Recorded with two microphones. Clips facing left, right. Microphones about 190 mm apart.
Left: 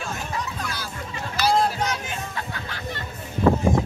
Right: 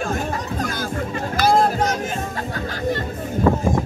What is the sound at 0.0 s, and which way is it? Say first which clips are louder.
Music: right 6 dB; 50° right (ahead or behind).